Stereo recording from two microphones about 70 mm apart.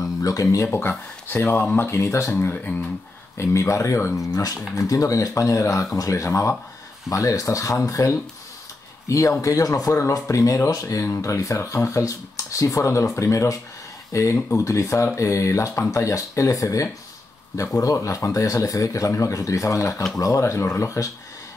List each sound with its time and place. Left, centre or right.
0.0 s speech: left
0.7 s speech: left
3.3 s speech: left
4.3 s speech: left